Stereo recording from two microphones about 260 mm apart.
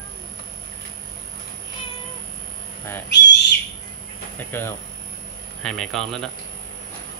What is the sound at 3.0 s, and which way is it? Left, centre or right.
Owl, left.